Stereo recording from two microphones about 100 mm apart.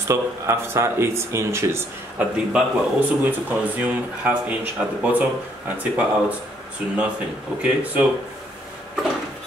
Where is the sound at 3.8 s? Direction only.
15° right (ahead or behind).